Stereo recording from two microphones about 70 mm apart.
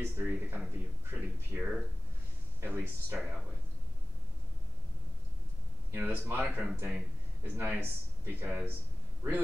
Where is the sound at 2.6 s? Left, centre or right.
Right.